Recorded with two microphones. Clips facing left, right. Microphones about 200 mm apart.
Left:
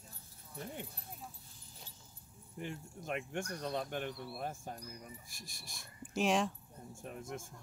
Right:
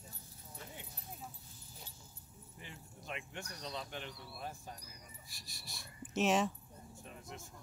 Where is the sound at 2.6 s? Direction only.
50° left (ahead or behind).